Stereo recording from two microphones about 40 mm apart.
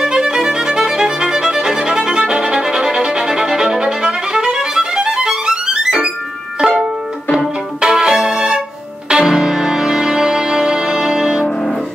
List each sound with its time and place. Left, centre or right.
0.0 s music: centre
2.0 s violin: centre
6.6 s music: centre